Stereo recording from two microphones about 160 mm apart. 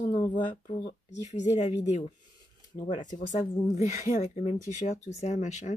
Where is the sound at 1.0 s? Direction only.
45° left (ahead or behind).